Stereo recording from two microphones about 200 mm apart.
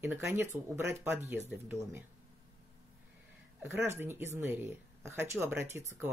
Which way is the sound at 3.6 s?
10° right (ahead or behind).